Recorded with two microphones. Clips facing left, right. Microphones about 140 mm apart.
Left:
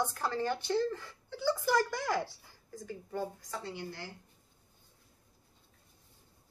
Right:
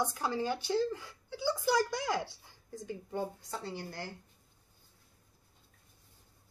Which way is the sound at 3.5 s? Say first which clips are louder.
Even; 35° right (ahead or behind).